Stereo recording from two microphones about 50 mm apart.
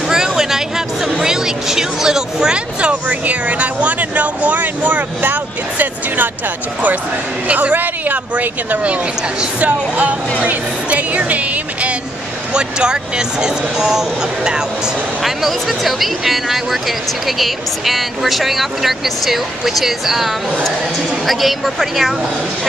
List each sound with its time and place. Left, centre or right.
0.1 s a sound: centre
1.1 s speech: centre; by 6.3 s right
7.4 s speech: right
12.5 s speech: centre
15.2 s speech: centre